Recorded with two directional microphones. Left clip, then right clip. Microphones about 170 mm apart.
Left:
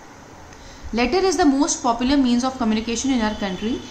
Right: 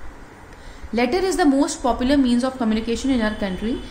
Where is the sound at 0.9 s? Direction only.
25° right (ahead or behind).